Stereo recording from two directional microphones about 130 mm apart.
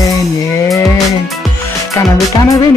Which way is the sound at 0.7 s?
25° left (ahead or behind).